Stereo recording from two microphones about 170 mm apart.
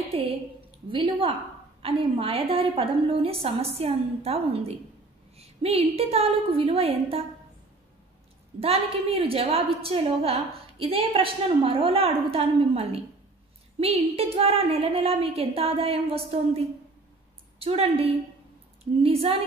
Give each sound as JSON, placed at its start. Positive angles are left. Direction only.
{"t": 0.8, "sound": "a woman's voice", "side_deg": -30}
{"t": 8.5, "sound": "a woman's voice", "side_deg": -35}